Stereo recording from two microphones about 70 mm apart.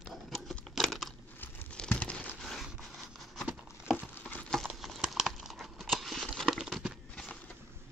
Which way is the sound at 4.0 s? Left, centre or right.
Left.